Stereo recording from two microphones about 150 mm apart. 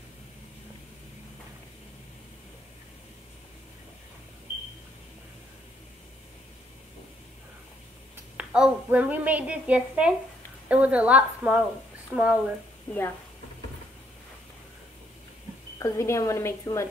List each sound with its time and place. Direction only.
8.4 s a woman's voice: 5° right (ahead or behind)
15.8 s a woman's voice: 20° left (ahead or behind)